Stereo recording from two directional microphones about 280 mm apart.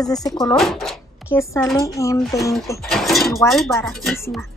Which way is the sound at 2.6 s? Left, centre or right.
Centre.